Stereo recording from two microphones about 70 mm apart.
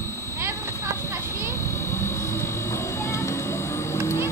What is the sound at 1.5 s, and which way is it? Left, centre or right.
Vehicle, left.